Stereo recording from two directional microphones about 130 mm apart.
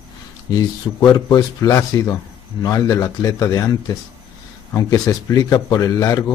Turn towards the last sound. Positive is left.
turn(degrees=30)  # may be behind; listen again after turning